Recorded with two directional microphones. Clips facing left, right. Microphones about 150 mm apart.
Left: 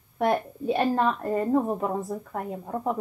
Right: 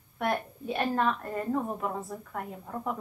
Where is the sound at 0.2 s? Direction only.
35° left (ahead or behind).